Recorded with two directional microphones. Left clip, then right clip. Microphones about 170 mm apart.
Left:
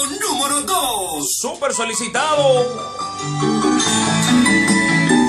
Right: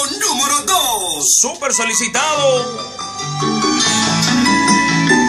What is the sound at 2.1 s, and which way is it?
Music, centre (ahead or behind).